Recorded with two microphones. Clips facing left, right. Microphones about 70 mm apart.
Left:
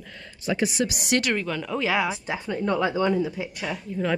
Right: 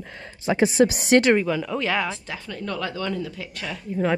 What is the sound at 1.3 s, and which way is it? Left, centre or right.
Speech, centre.